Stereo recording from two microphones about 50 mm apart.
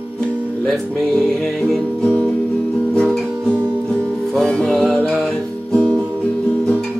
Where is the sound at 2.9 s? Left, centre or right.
Centre.